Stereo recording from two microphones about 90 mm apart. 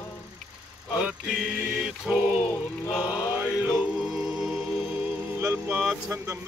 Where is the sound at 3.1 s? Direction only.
10° right (ahead or behind).